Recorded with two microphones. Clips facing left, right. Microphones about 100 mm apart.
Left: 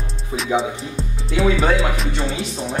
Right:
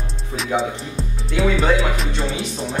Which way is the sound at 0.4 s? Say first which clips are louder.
Left 1 dB; centre (ahead or behind).